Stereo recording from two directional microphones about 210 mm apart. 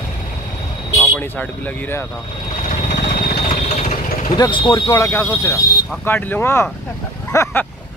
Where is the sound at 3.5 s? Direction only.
30° left (ahead or behind).